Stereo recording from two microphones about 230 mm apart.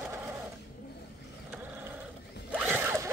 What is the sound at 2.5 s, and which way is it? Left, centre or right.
Zipper, centre.